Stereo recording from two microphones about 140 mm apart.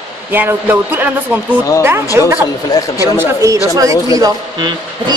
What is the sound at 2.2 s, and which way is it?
Speech, 25° right (ahead or behind).